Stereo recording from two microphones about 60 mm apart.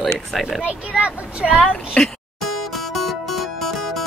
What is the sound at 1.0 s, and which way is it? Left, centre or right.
Speech, right.